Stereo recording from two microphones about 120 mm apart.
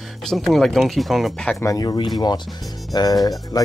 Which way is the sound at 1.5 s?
30° left (ahead or behind).